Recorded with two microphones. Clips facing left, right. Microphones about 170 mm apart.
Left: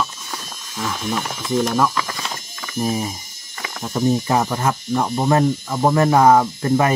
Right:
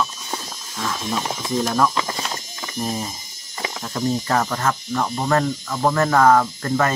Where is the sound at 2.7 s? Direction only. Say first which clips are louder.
Left 4 dB; 10° left (ahead or behind).